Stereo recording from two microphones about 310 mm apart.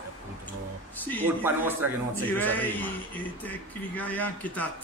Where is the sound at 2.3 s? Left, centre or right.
Centre.